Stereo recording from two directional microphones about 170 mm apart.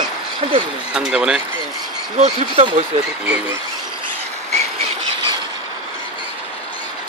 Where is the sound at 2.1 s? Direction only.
40° right (ahead or behind).